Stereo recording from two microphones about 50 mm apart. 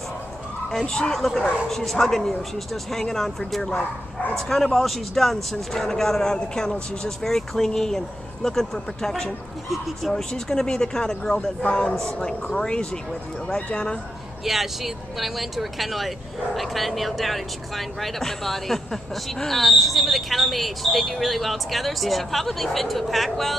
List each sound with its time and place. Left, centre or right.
0.7 s speech: centre
14.4 s speech: centre